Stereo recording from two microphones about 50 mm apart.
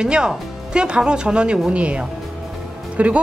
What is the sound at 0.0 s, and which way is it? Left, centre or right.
Speech, centre.